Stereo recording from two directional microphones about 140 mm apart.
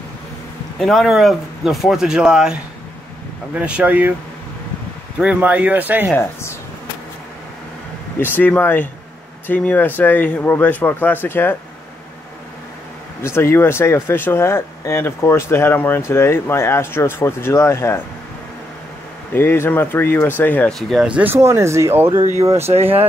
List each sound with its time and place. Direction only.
0.7 s speech: centre (ahead or behind)
5.2 s speech: 10° right (ahead or behind)
8.2 s speech: 15° left (ahead or behind)
13.2 s speech: 20° left (ahead or behind)
19.3 s speech: 15° left (ahead or behind)
20.9 s speech: 5° right (ahead or behind); by 22.7 s 25° right (ahead or behind)